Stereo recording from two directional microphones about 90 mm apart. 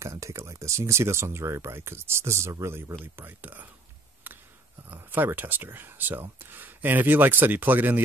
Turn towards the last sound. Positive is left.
turn(degrees=-20)  # may be behind; listen again after turning